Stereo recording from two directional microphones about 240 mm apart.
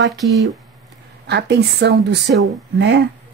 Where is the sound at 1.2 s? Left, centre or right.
Right.